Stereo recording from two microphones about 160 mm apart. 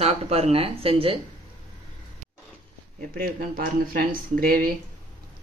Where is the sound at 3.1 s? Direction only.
65° right (ahead or behind).